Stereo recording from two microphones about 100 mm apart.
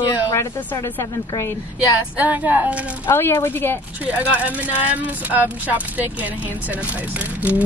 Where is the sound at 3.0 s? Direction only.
25° left (ahead or behind).